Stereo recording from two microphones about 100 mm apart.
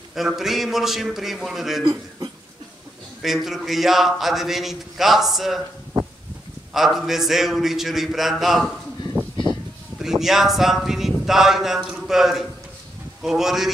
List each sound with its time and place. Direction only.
0.1 s speech: 5° right (ahead or behind)
3.2 s speech: 5° right (ahead or behind)
6.7 s speech: 5° right (ahead or behind)
9.1 s a sound: 20° right (ahead or behind)
10.0 s speech: 5° right (ahead or behind)